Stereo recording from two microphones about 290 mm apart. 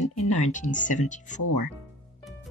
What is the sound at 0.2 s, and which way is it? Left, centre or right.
Speech, left.